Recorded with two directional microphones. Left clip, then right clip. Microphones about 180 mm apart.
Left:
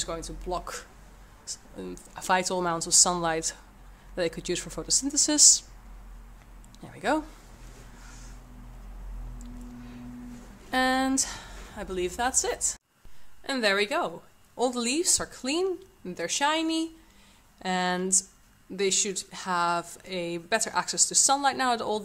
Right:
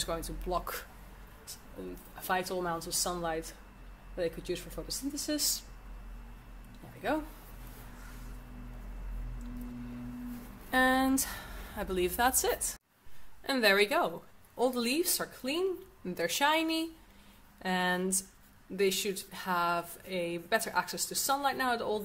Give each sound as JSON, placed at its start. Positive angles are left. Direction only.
{"t": 0.0, "sound": "speech", "side_deg": 10}
{"t": 2.1, "sound": "a woman's voice", "side_deg": 35}
{"t": 10.7, "sound": "a woman's voice", "side_deg": 10}
{"t": 16.0, "sound": "speech", "side_deg": 5}